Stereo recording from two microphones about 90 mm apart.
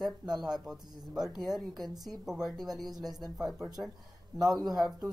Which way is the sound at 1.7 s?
45° right (ahead or behind).